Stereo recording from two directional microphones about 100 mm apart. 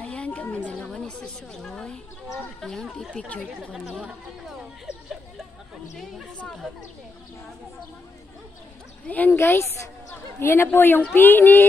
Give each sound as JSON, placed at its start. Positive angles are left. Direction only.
{"t": 0.0, "sound": "a sound", "side_deg": 10}
{"t": 0.7, "sound": "a woman's voice", "side_deg": 10}
{"t": 6.3, "sound": "speech", "side_deg": 10}
{"t": 9.0, "sound": "speech", "side_deg": 15}